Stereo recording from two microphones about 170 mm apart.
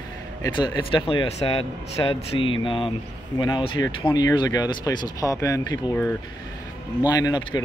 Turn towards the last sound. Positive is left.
turn(degrees=20)  # may be behind; listen again after turning